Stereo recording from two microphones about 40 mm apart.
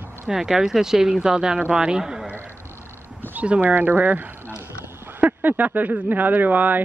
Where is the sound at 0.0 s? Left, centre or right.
Right.